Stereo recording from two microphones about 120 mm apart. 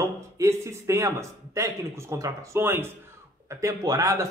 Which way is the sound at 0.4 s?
25° right (ahead or behind).